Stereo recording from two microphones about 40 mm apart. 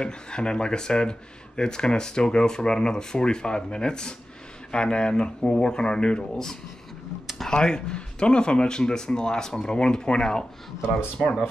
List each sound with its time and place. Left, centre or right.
0.0 s speech: left
7.3 s speech: centre
9.8 s speech: left